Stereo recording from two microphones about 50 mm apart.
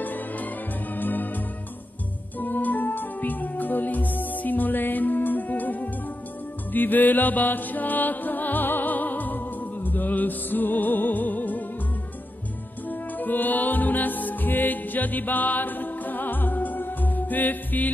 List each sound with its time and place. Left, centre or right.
0.0 s music: left
13.2 s music: left